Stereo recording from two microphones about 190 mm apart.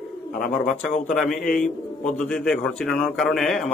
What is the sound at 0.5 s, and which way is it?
Speech, centre (ahead or behind).